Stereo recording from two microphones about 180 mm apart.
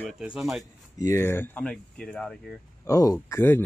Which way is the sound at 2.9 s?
20° left (ahead or behind).